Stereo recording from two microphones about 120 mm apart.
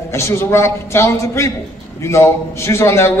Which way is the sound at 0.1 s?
20° left (ahead or behind).